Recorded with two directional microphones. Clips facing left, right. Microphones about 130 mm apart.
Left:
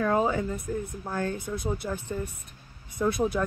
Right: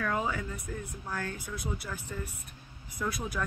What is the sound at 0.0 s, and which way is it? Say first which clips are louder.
Speech: left 7 dB; 30° left (ahead or behind).